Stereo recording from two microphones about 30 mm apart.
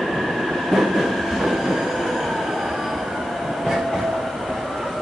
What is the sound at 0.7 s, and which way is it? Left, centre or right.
Train, centre.